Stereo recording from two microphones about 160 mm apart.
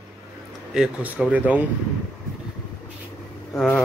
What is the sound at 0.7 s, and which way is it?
Speech, 10° right (ahead or behind).